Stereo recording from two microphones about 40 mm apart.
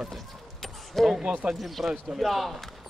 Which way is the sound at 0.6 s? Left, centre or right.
Centre.